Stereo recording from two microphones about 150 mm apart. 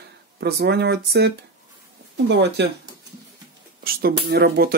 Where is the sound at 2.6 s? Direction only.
90° right.